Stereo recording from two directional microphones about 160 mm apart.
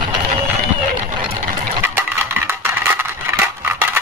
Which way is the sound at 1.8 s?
15° right (ahead or behind).